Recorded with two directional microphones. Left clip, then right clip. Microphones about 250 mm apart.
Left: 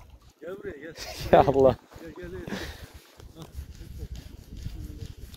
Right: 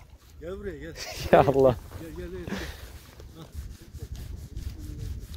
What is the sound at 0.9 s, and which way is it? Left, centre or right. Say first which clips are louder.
Speech: even; centre.